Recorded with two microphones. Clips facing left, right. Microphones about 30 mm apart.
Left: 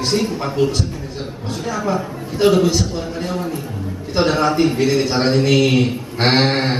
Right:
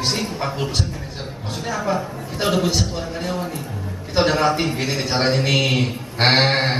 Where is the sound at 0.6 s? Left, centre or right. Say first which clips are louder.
Left 10 dB; right.